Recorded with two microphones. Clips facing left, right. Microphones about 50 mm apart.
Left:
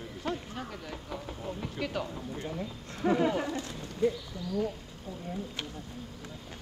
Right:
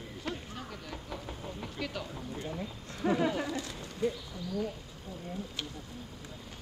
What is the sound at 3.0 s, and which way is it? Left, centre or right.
Speech, centre.